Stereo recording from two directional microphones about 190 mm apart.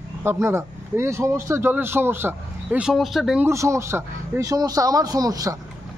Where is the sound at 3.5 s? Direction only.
15° right (ahead or behind).